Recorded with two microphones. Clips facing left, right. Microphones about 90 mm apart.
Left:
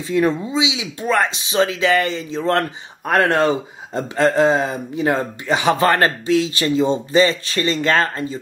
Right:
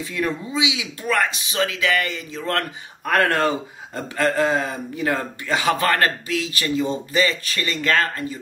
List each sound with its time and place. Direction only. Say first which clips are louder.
0.1 s speech: left 8 dB; 25° left (ahead or behind)